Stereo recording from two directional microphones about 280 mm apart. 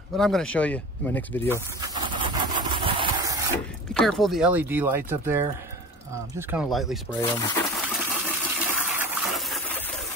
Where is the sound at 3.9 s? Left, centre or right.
Centre.